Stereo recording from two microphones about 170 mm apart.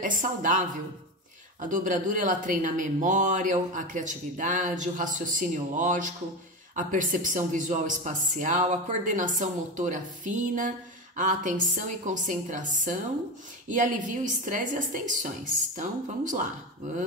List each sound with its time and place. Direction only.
0.0 s speech: 50° right (ahead or behind)